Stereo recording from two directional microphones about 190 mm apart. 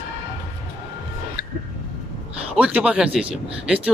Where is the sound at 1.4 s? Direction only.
50° left (ahead or behind).